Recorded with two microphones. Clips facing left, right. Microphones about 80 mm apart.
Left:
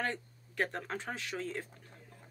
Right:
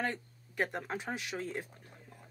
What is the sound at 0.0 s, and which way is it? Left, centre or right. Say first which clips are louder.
Speech: even; centre.